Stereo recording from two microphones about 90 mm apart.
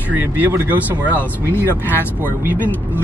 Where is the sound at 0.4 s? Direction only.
20° right (ahead or behind).